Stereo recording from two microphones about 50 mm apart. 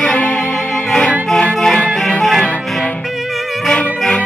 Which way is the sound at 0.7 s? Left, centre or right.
Centre.